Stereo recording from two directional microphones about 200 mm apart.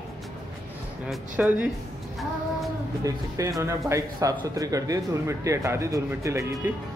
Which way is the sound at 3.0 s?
15° right (ahead or behind).